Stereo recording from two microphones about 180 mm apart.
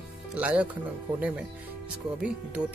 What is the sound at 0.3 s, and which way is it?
Speech, 5° right (ahead or behind).